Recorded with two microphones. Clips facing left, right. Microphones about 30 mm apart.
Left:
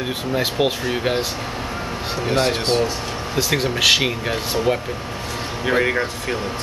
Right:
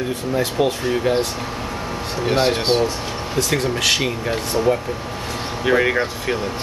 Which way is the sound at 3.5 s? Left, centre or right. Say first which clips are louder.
Left 3 dB; centre.